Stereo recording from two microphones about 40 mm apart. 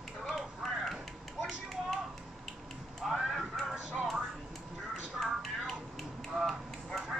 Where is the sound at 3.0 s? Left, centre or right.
Centre.